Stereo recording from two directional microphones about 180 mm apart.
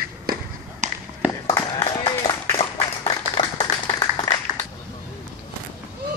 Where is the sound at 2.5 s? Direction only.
30° left (ahead or behind).